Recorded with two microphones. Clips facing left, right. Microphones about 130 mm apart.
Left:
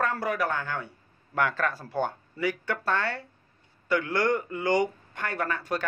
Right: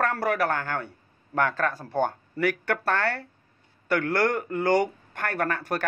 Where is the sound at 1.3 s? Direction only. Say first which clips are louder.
Right 2 dB; 45° right (ahead or behind).